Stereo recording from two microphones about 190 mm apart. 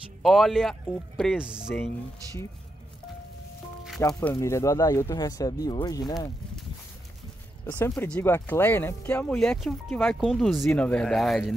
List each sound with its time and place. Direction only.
0.2 s speech: centre (ahead or behind)
4.1 s speech: 10° left (ahead or behind)
7.6 s speech: 10° left (ahead or behind)